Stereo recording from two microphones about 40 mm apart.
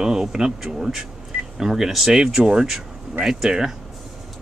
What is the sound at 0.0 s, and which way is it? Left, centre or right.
Speech, centre.